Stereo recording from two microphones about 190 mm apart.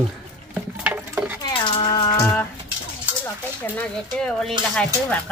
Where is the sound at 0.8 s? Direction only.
10° right (ahead or behind).